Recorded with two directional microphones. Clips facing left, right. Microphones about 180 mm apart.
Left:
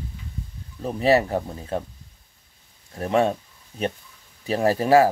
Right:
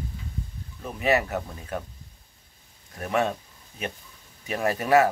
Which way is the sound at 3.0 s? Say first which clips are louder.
Left 5 dB; 30° left (ahead or behind).